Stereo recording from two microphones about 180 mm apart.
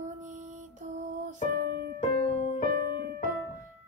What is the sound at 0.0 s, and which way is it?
Music, 45° right (ahead or behind).